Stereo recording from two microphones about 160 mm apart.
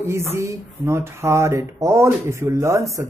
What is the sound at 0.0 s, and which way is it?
Speech, 15° right (ahead or behind).